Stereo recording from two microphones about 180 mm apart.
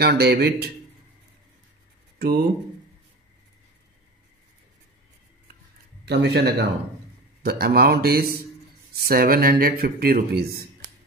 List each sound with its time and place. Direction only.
0.0 s speech: 60° right (ahead or behind)
2.1 s speech: 60° right (ahead or behind)
6.0 s speech: 70° right (ahead or behind)